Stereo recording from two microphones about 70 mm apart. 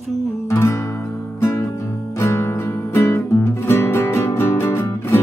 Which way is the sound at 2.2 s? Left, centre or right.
Left.